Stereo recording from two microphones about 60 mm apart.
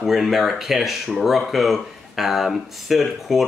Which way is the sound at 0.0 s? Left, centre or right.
Centre.